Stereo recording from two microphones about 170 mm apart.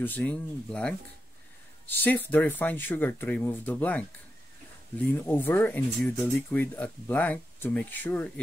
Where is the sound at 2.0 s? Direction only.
10° left (ahead or behind).